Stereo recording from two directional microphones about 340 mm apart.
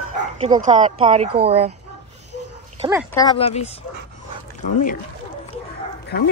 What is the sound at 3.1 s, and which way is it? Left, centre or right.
Speech, centre.